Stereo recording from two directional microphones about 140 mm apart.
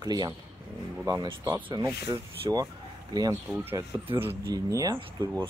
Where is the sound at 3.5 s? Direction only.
15° right (ahead or behind).